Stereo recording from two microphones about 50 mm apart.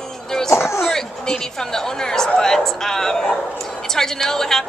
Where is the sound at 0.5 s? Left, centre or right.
Left.